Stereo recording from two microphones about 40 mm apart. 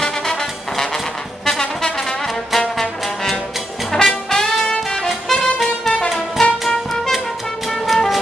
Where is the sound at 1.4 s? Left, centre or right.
Centre.